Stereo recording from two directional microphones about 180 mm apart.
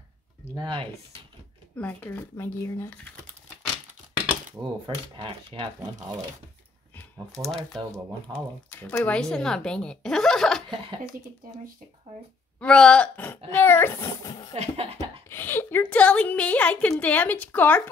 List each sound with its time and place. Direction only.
0.6 s speech: 25° right (ahead or behind)
1.8 s a woman's voice: 10° left (ahead or behind)
4.8 s speech: 30° right (ahead or behind)
7.3 s a woman's voice: centre (ahead or behind)
12.5 s a woman's voice: 5° left (ahead or behind); by 14.5 s 20° left (ahead or behind)
14.5 s a sound: 35° right (ahead or behind)
15.2 s a woman's voice: 10° left (ahead or behind)